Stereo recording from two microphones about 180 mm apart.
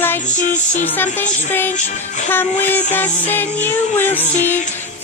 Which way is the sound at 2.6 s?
10° left (ahead or behind).